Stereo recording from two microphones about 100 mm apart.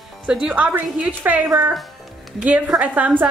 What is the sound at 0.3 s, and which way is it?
Speech, 10° right (ahead or behind).